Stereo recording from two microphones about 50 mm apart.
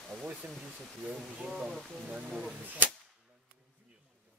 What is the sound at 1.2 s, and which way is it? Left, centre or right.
Speech, centre.